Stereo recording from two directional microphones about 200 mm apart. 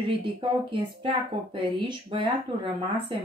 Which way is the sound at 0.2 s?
25° right (ahead or behind).